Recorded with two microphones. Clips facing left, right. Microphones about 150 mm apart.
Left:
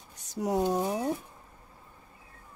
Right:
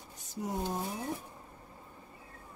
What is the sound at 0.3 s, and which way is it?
Speech, 80° left.